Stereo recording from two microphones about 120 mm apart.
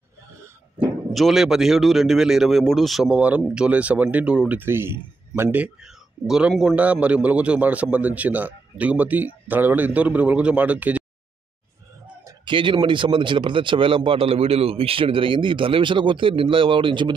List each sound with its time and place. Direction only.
1.1 s a man's voice: centre (ahead or behind)
12.4 s speech: 45° right (ahead or behind)